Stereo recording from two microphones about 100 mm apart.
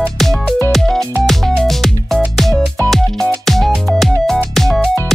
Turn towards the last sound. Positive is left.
turn(degrees=5)  # may be behind; listen again after turning